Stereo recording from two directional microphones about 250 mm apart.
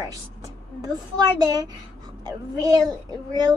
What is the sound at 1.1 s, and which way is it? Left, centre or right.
A child's voice, centre.